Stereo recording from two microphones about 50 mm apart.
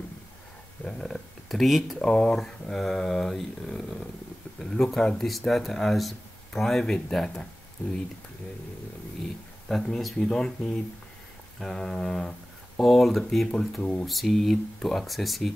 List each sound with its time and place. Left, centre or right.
0.8 s speech: centre
2.0 s speech: centre
4.6 s a sound: centre
4.9 s speech: centre
9.7 s speech: centre
10.1 s speech: centre